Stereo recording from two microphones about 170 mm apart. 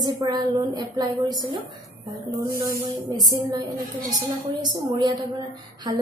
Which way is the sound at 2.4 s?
60° right (ahead or behind).